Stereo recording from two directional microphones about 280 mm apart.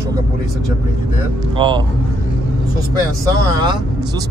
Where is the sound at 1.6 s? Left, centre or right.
Centre.